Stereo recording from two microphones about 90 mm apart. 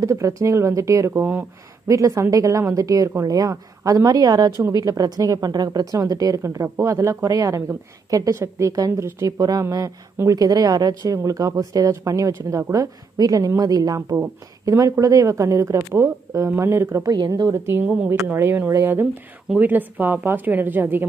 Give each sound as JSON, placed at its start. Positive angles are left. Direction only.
{"t": 0.0, "sound": "a woman's voice", "side_deg": -35}
{"t": 14.1, "sound": "speech", "side_deg": -30}
{"t": 17.0, "sound": "a woman's voice", "side_deg": -45}
{"t": 17.8, "sound": "speech", "side_deg": -15}
{"t": 18.1, "sound": "a woman's voice", "side_deg": -35}